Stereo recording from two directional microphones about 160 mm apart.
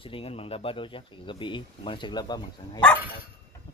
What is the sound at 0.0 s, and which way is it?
Speech, 35° left (ahead or behind).